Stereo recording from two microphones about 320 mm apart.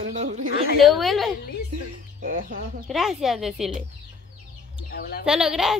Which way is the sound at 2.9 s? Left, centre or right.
Centre.